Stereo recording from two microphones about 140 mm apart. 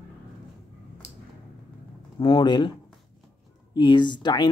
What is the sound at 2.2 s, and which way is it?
Speech, 35° left (ahead or behind).